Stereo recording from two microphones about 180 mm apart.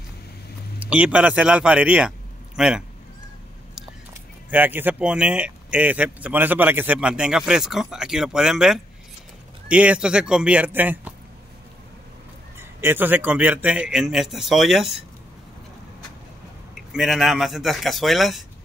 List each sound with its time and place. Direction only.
0.7 s speech: 5° right (ahead or behind)
4.5 s speech: 10° right (ahead or behind)
12.5 s a man's voice: 10° right (ahead or behind)
16.9 s a man's voice: centre (ahead or behind)